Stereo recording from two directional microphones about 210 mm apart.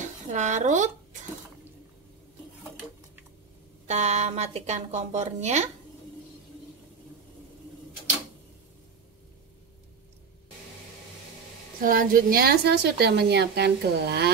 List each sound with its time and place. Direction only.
0.0 s speech: 35° right (ahead or behind)
3.8 s a woman's voice: 35° right (ahead or behind)
11.8 s a woman's voice: 40° right (ahead or behind)